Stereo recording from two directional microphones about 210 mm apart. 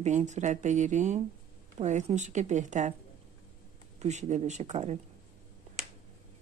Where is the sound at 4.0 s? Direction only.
35° right (ahead or behind).